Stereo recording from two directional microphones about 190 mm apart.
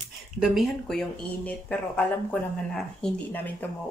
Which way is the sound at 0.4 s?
Centre (ahead or behind).